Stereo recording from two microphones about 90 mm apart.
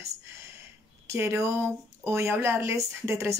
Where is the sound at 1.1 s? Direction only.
30° right (ahead or behind).